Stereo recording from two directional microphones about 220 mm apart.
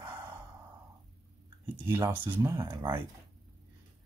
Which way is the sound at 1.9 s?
10° right (ahead or behind).